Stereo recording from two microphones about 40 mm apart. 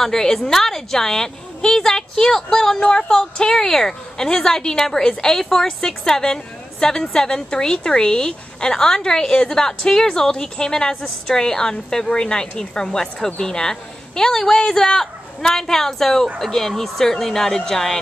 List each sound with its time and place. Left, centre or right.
0.0 s a woman's voice: centre